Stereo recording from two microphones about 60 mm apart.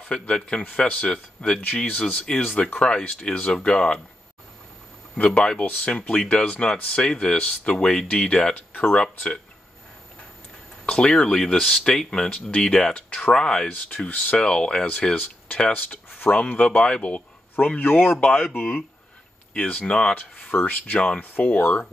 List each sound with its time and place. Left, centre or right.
0.1 s a man's voice: centre
5.1 s a man's voice: centre
10.9 s speech: centre
13.7 s a man's voice: left
14.3 s speech: centre
15.7 s speech: left
17.7 s speech: left
18.3 s a man's voice: left